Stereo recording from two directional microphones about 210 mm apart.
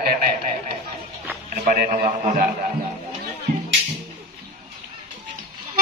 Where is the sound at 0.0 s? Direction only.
45° right (ahead or behind).